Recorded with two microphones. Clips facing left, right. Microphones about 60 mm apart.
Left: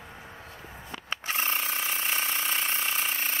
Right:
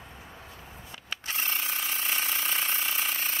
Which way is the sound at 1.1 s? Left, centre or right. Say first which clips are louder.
Left 3 dB; left.